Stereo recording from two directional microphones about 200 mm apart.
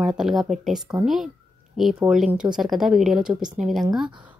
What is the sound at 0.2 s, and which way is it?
A woman's voice, centre (ahead or behind).